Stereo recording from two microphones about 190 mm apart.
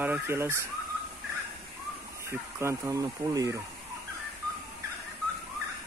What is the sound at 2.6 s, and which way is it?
Speech, 15° right (ahead or behind).